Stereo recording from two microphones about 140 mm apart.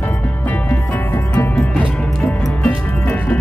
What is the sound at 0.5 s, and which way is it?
Music, 15° left (ahead or behind).